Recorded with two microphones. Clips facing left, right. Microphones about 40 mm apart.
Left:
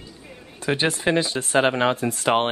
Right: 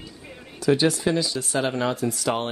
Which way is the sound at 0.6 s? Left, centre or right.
Left.